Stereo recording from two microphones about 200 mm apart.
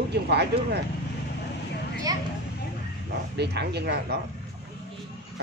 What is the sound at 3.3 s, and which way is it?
Speech, 55° right (ahead or behind).